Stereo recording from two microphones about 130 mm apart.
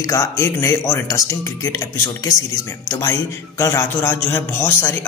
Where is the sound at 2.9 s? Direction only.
25° left (ahead or behind).